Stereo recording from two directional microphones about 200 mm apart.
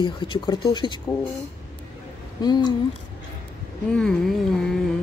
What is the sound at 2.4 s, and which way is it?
Speech, 20° left (ahead or behind).